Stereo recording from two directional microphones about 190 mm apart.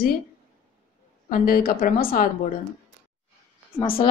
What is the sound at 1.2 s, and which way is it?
A woman's voice, 45° left (ahead or behind).